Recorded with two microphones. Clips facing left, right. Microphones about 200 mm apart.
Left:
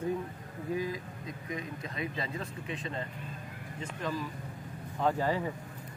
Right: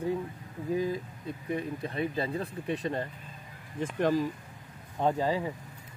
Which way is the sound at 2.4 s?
60° right (ahead or behind).